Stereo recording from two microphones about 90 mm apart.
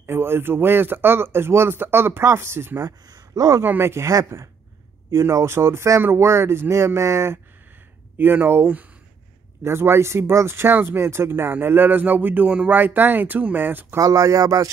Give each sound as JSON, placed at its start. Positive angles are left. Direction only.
{"t": 0.0, "sound": "speech", "side_deg": -25}
{"t": 2.8, "sound": "speech", "side_deg": -45}
{"t": 3.6, "sound": "speech", "side_deg": -25}
{"t": 13.9, "sound": "speech", "side_deg": -40}